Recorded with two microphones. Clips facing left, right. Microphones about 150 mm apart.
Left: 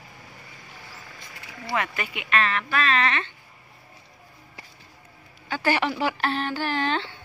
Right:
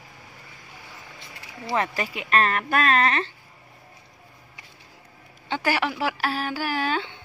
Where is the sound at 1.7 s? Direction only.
35° right (ahead or behind).